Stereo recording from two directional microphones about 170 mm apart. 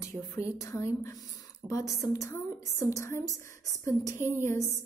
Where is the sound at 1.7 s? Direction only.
20° left (ahead or behind).